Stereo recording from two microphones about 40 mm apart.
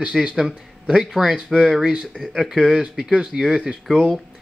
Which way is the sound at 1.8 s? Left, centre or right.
Right.